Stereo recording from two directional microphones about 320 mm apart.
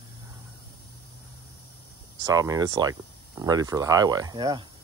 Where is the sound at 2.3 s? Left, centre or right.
Centre.